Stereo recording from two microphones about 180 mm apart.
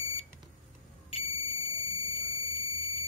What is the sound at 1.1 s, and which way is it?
Smoke detector, 35° left (ahead or behind).